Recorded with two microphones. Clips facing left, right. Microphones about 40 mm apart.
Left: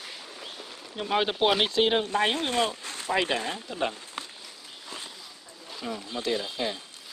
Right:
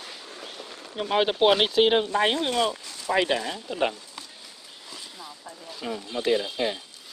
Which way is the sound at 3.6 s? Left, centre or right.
Centre.